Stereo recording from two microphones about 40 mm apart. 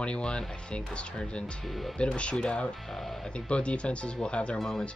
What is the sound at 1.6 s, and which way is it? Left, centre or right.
Speech, centre.